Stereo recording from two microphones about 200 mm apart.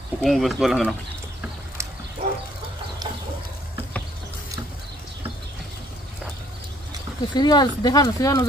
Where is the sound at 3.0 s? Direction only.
20° right (ahead or behind).